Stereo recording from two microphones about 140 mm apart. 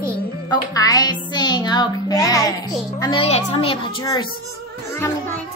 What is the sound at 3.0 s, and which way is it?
Speech, 40° left (ahead or behind).